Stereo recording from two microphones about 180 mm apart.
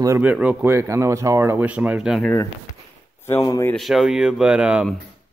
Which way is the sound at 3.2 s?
15° left (ahead or behind).